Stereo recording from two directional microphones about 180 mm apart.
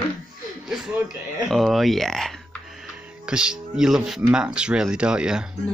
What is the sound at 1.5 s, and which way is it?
A man's voice, centre (ahead or behind).